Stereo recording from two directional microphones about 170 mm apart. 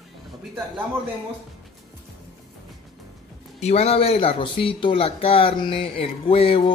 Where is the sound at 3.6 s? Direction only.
35° left (ahead or behind).